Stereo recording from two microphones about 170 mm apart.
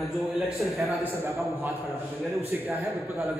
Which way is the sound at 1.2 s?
15° right (ahead or behind).